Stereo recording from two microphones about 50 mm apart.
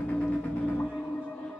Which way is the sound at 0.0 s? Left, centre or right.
Left.